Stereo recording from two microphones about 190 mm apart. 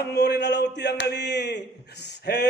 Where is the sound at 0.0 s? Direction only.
60° left (ahead or behind).